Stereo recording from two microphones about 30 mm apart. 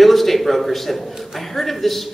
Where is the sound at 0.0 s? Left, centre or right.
Centre.